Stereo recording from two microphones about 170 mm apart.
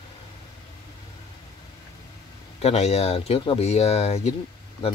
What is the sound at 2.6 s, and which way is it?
Speech, 40° left (ahead or behind).